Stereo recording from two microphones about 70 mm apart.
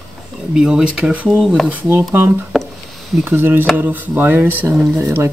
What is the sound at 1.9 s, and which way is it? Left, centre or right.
Speech, right.